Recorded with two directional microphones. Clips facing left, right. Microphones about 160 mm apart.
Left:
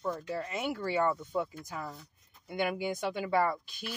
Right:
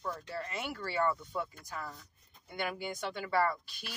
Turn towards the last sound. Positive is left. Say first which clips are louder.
# left 2 dB
turn(degrees=15)  # may be behind; listen again after turning